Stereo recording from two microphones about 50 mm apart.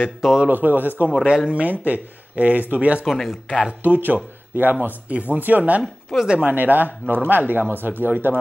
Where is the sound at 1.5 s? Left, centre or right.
Right.